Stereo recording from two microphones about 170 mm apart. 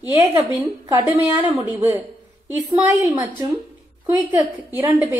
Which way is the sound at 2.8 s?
15° right (ahead or behind).